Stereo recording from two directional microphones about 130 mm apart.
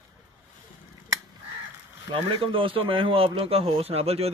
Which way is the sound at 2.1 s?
40° right (ahead or behind).